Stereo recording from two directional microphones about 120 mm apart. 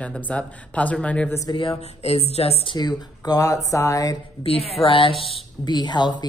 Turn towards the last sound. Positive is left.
turn(degrees=40)  # may be behind; listen again after turning